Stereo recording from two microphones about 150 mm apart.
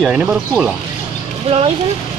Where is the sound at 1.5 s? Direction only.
45° right (ahead or behind).